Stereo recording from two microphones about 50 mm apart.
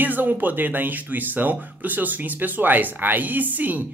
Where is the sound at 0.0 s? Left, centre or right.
Right.